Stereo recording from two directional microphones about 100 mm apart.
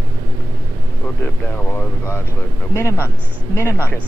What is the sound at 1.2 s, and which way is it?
Speech, 20° left (ahead or behind).